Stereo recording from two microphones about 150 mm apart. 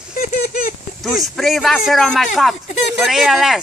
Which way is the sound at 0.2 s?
60° left (ahead or behind).